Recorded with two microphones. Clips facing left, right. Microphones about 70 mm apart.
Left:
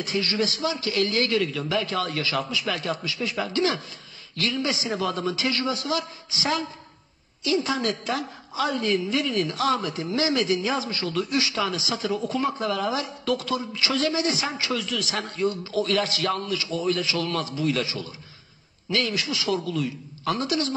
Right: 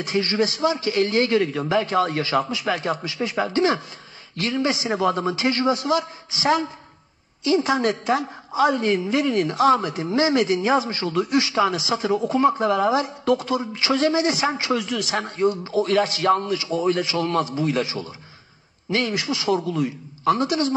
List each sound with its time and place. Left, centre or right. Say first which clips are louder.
0.0 s a woman's voice: right 4 dB; right